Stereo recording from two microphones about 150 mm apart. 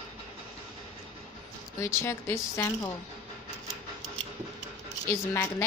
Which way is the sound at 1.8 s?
20° left (ahead or behind).